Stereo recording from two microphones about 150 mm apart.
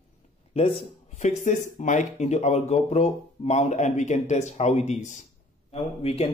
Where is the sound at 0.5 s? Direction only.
45° left (ahead or behind).